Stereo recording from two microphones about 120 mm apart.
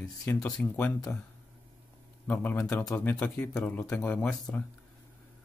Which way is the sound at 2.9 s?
15° left (ahead or behind).